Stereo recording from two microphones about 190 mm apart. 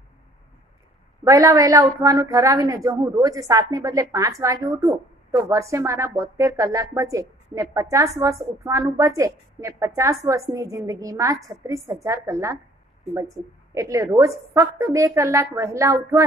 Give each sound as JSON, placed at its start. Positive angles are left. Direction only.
{"t": 1.2, "sound": "a woman's voice", "side_deg": -15}
{"t": 13.7, "sound": "a woman's voice", "side_deg": -15}